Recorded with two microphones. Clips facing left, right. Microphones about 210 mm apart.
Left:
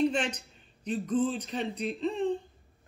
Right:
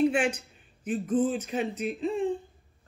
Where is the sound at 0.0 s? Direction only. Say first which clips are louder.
Right 3 dB; 10° right (ahead or behind).